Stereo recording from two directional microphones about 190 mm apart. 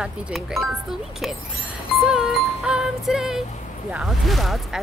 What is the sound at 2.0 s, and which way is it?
Music, centre (ahead or behind).